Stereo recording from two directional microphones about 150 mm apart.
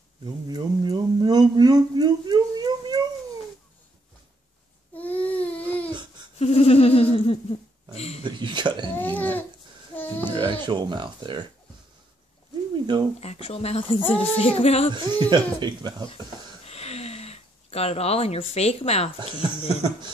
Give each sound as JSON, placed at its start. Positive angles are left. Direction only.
{"t": 0.5, "sound": "speech", "side_deg": -25}
{"t": 4.9, "sound": "baby cry", "side_deg": 10}
{"t": 6.4, "sound": "humming", "side_deg": 40}
{"t": 8.2, "sound": "a sound", "side_deg": -30}
{"t": 8.9, "sound": "a sound", "side_deg": 10}
{"t": 10.3, "sound": "speech", "side_deg": -30}
{"t": 12.8, "sound": "speech", "side_deg": -30}
{"t": 13.2, "sound": "speech", "side_deg": 45}
{"t": 15.0, "sound": "speech", "side_deg": -30}
{"t": 16.6, "sound": "a sound", "side_deg": 45}